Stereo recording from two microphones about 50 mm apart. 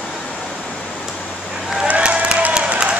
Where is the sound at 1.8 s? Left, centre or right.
Right.